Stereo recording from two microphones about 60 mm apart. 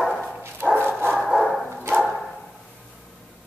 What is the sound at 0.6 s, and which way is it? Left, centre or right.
Dog, centre.